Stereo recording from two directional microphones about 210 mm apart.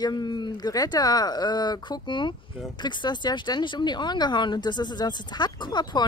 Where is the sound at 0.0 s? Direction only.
20° left (ahead or behind).